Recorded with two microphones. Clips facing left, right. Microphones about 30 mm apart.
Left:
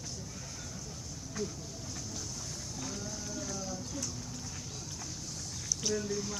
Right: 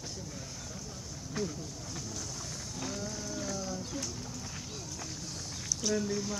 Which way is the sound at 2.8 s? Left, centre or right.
Centre.